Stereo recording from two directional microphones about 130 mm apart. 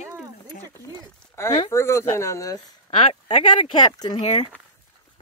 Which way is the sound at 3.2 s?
35° left (ahead or behind).